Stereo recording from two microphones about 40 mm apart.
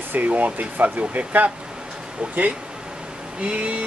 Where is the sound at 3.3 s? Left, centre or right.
Right.